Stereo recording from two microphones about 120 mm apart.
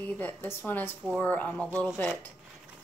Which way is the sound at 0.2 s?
15° left (ahead or behind).